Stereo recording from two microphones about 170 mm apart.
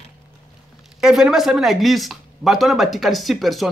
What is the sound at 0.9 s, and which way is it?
Speech, 5° right (ahead or behind).